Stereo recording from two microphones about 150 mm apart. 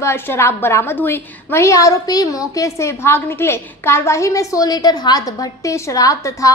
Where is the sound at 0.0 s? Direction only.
15° left (ahead or behind).